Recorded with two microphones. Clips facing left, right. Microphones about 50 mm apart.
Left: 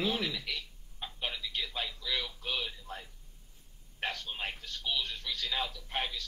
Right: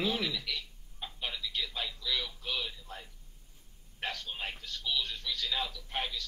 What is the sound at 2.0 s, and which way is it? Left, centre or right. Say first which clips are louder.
Radio: even; left.